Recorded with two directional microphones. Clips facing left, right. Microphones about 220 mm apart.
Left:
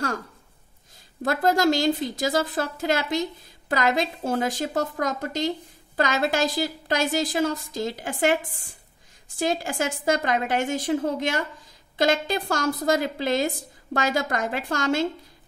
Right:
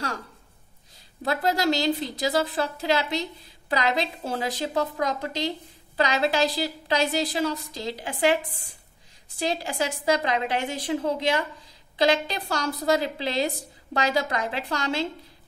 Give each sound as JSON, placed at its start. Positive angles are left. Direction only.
{"t": 1.2, "sound": "a woman's voice", "side_deg": 45}
{"t": 9.4, "sound": "a woman's voice", "side_deg": 50}